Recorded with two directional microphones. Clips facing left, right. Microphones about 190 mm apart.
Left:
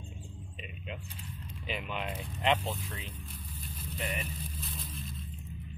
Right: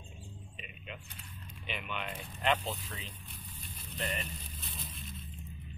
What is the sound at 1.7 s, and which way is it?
Speech, 30° left (ahead or behind).